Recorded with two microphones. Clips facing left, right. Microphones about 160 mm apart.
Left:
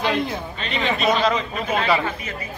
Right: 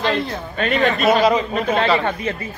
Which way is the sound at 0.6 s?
50° right (ahead or behind).